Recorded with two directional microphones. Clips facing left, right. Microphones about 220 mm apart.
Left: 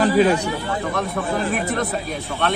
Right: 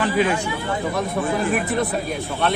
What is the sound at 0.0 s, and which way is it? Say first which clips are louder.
Speech: left 4 dB; 35° left (ahead or behind).